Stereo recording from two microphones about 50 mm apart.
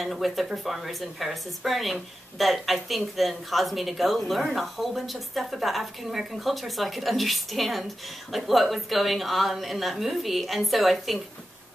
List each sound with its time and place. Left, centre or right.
0.0 s speech: centre